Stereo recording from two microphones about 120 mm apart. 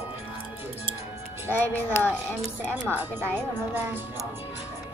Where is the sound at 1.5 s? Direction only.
20° left (ahead or behind).